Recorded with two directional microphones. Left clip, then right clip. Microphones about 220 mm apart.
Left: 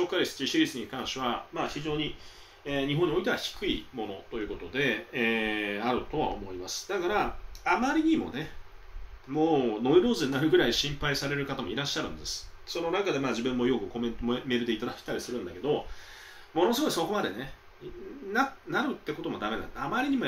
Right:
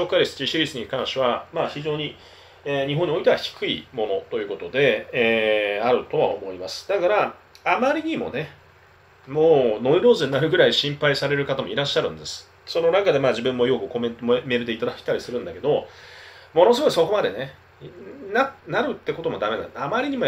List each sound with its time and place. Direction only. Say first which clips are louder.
0.1 s speech: right 8 dB; 5° left (ahead or behind)
16.5 s speech: right 11 dB; 10° left (ahead or behind)